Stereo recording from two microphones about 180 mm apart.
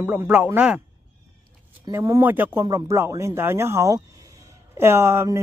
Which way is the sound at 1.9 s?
15° right (ahead or behind).